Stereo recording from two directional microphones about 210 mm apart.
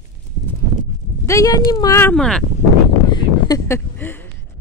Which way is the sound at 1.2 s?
15° left (ahead or behind).